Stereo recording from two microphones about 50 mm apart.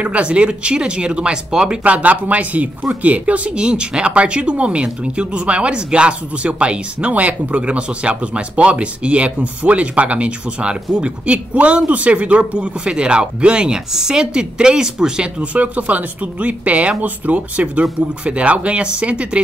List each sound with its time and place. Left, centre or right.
0.0 s speech: right
1.8 s speech: right
15.5 s speech: right